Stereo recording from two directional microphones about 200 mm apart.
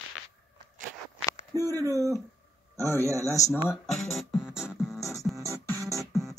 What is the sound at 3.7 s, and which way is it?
Speech, centre (ahead or behind).